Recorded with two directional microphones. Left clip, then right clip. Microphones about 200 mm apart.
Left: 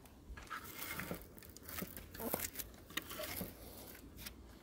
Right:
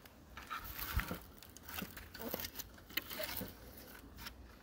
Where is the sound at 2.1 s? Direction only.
30° left (ahead or behind).